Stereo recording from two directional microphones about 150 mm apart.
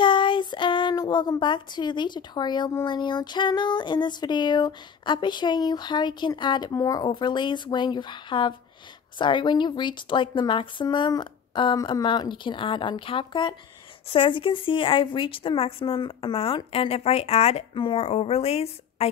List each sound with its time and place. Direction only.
0.0 s a woman's voice: 30° left (ahead or behind)